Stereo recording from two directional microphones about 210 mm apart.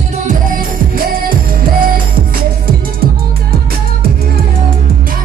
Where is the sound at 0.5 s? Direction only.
45° right (ahead or behind).